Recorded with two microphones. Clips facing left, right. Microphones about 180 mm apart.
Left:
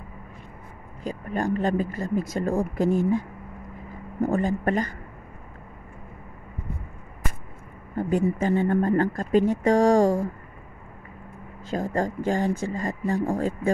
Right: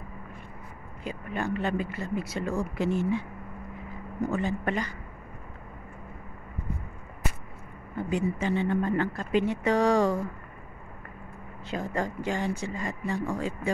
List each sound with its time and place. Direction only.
1.0 s speech: 40° left (ahead or behind)
7.9 s speech: 45° left (ahead or behind)
11.7 s speech: 40° left (ahead or behind)